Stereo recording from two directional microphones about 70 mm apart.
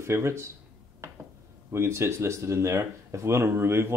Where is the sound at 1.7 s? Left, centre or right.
Right.